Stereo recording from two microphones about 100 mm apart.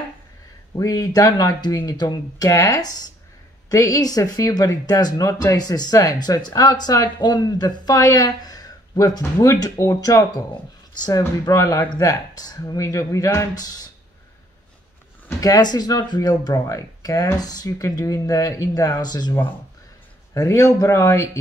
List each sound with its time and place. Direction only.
0.7 s speech: 35° left (ahead or behind)
15.4 s speech: 40° left (ahead or behind)
20.3 s speech: 35° left (ahead or behind)